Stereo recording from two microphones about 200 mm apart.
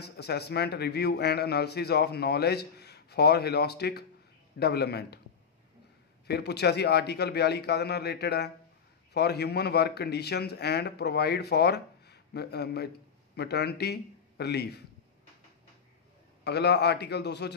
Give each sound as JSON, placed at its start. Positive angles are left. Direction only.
{"t": 0.0, "sound": "a man's voice", "side_deg": 55}
{"t": 6.2, "sound": "a man's voice", "side_deg": 55}
{"t": 16.4, "sound": "a man's voice", "side_deg": 55}